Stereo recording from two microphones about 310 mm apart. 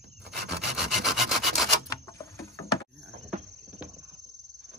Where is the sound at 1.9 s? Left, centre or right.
Centre.